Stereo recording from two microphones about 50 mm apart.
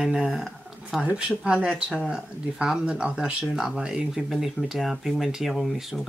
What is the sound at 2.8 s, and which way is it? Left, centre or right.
Speech, right.